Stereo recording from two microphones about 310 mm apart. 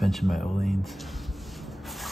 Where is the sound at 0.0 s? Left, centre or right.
Centre.